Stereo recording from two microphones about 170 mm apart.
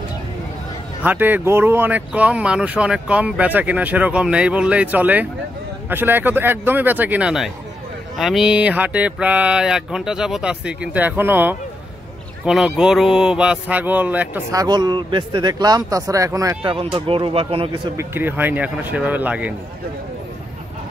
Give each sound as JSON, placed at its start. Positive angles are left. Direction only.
{"t": 1.0, "sound": "speech", "side_deg": -10}
{"t": 8.2, "sound": "mantra", "side_deg": 0}
{"t": 12.4, "sound": "speech", "side_deg": -5}
{"t": 16.9, "sound": "speech", "side_deg": -30}
{"t": 17.9, "sound": "speech", "side_deg": -10}